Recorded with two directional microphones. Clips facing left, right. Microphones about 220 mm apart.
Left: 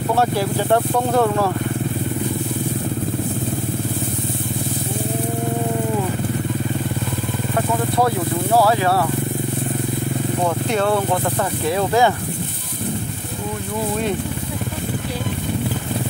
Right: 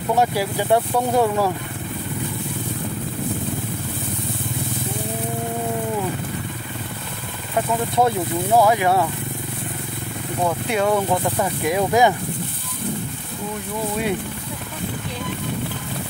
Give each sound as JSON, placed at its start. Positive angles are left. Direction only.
{"t": 0.1, "sound": "speech", "side_deg": -10}
{"t": 8.6, "sound": "speech", "side_deg": -15}
{"t": 10.7, "sound": "speech", "side_deg": -10}